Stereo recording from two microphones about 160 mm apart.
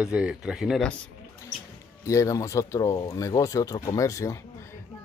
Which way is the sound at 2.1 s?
20° left (ahead or behind).